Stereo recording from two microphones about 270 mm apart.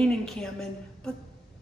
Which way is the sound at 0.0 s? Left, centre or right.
Centre.